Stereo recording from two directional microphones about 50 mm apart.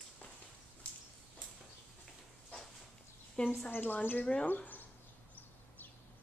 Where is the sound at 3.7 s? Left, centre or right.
Left.